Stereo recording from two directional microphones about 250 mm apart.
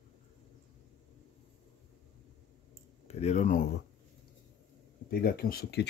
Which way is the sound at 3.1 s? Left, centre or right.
Left.